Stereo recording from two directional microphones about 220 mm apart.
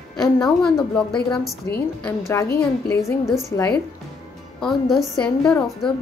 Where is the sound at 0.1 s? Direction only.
Centre (ahead or behind).